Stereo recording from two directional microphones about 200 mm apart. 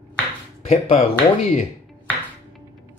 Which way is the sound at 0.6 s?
30° left (ahead or behind).